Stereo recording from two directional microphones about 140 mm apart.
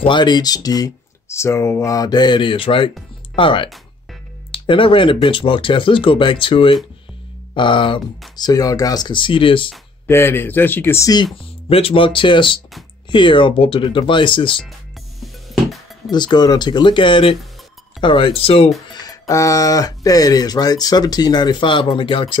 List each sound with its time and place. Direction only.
0.0 s speech: 35° left (ahead or behind)
10.0 s speech: 15° left (ahead or behind)
11.7 s speech: 40° left (ahead or behind)
16.1 s speech: 30° left (ahead or behind)
18.9 s speech: 30° left (ahead or behind)